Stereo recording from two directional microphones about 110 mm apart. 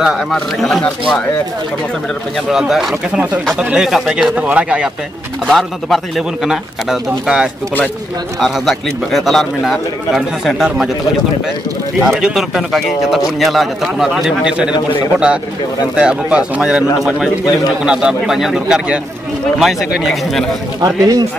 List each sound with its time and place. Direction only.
0.0 s speech: centre (ahead or behind)
2.5 s speech: 5° right (ahead or behind)
12.0 s speech: 5° right (ahead or behind)
16.0 s speech: 10° right (ahead or behind)
17.8 s speech: 5° right (ahead or behind)
20.8 s speech: 35° right (ahead or behind)